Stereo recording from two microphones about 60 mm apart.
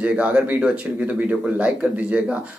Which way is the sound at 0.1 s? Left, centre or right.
Centre.